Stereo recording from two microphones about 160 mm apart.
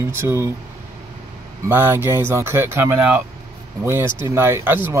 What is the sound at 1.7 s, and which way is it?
Speech, 15° right (ahead or behind).